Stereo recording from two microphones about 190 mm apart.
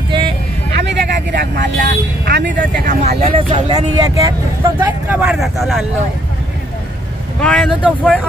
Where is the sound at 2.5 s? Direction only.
45° right (ahead or behind).